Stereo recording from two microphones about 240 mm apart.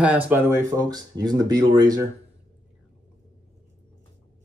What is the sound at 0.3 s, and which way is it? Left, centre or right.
Speech, centre.